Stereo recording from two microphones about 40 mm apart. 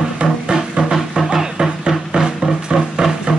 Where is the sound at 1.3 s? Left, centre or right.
Centre.